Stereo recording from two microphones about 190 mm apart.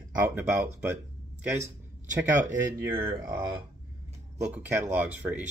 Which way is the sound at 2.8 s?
10° right (ahead or behind).